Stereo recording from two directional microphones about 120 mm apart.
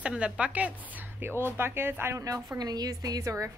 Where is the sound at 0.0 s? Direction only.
10° right (ahead or behind).